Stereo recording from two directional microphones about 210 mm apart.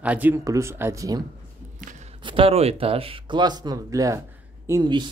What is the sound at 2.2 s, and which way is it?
Speech, 25° right (ahead or behind).